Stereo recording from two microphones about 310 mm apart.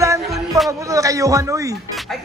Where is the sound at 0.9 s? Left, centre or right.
Centre.